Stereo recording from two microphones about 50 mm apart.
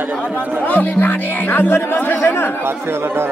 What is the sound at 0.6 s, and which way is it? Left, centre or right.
Speech, left.